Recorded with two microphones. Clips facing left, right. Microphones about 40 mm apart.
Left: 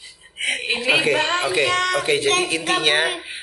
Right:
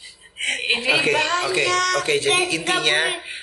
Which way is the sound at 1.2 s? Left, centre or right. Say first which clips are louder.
Left 1 dB; left.